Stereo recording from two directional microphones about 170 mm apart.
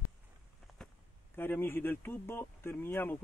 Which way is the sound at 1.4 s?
10° left (ahead or behind).